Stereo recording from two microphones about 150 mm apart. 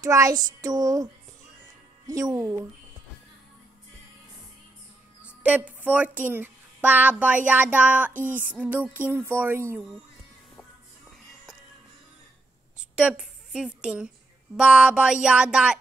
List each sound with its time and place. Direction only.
0.0 s child singing: 20° right (ahead or behind)
5.2 s a child's voice: 10° right (ahead or behind)
8.1 s music: 60° right (ahead or behind)
8.5 s speech: 15° right (ahead or behind)
12.7 s a sound: 5° right (ahead or behind)
14.6 s music: 5° right (ahead or behind)